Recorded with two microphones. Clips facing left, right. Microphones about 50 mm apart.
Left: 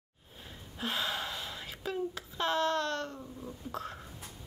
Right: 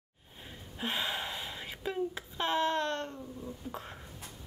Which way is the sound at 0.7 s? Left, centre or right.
Centre.